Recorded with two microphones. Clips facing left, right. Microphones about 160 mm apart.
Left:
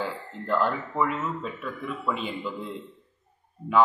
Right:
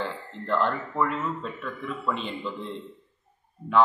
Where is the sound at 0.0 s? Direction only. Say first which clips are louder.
Left 1 dB; 5° left (ahead or behind).